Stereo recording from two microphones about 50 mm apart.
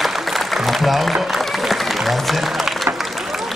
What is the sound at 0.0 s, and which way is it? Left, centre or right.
Music, centre.